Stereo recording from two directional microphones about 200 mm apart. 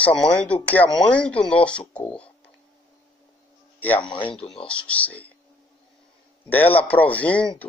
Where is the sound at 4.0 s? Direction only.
25° left (ahead or behind).